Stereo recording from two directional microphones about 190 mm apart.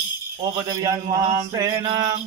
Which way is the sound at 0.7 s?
20° right (ahead or behind).